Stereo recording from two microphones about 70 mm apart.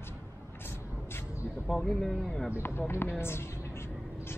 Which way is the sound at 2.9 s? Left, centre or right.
Left.